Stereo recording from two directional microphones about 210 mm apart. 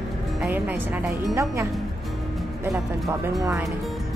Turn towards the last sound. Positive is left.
turn(degrees=-15)  # may be behind; listen again after turning